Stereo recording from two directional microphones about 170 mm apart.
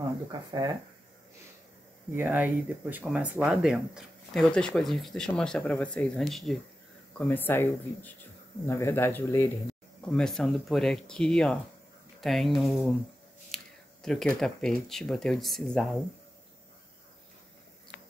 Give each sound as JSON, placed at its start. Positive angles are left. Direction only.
{"t": 0.3, "sound": "speech", "side_deg": -25}
{"t": 2.1, "sound": "speech", "side_deg": -10}
{"t": 10.1, "sound": "speech", "side_deg": 5}
{"t": 13.5, "sound": "a sound", "side_deg": 0}
{"t": 14.0, "sound": "speech", "side_deg": 5}